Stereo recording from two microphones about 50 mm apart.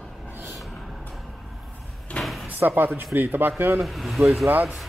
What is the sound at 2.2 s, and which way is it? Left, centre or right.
Door, centre.